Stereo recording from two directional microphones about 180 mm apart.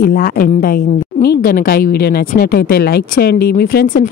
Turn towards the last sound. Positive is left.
turn(degrees=50)  # may be behind; listen again after turning